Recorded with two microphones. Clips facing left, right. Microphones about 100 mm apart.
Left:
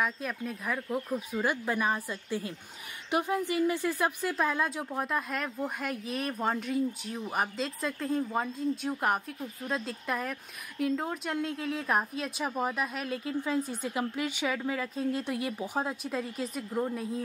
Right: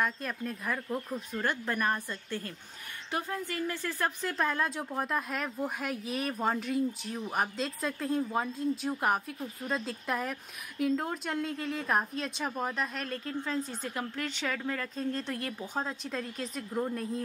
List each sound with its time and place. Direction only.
0.0 s a woman's voice: 5° left (ahead or behind)